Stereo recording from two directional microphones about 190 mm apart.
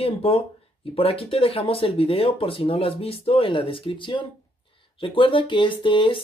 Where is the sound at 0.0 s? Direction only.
30° left (ahead or behind).